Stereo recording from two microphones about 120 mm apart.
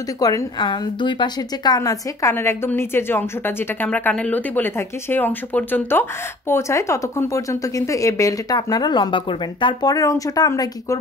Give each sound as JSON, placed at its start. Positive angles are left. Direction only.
{"t": 0.2, "sound": "a woman's voice", "side_deg": 35}